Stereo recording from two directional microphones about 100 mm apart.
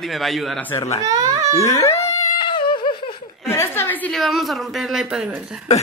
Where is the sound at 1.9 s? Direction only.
90° left.